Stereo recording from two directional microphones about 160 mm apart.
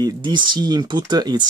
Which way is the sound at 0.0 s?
30° right (ahead or behind).